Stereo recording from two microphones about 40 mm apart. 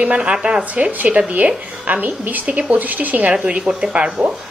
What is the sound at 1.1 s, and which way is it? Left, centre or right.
Speech, right.